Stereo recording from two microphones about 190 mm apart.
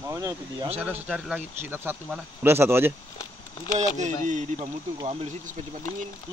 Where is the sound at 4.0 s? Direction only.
40° right (ahead or behind).